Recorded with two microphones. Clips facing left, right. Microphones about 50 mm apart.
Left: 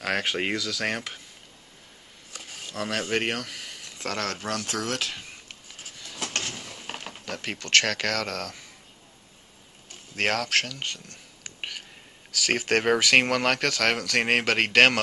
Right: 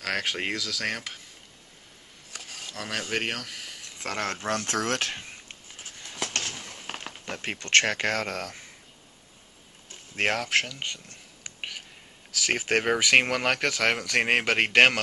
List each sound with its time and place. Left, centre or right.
0.0 s speech: centre
2.6 s speech: centre
4.0 s speech: centre
4.5 s speech: right
5.9 s a sound: right
6.4 s a sound: centre
7.2 s speech: right
10.1 s speech: centre